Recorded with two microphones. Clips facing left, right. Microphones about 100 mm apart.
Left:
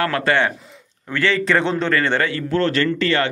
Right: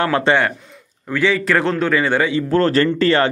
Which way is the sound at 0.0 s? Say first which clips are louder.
Right 3 dB; 25° right (ahead or behind).